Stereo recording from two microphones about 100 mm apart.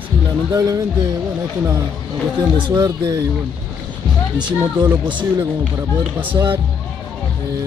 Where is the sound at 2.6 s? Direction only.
40° right (ahead or behind).